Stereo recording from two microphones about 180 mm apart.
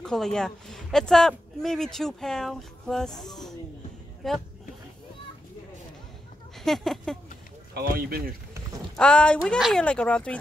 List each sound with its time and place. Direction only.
0.0 s speech: 5° left (ahead or behind)
6.6 s speech: centre (ahead or behind)
7.7 s speech: 60° right (ahead or behind)
8.9 s speech: 5° left (ahead or behind)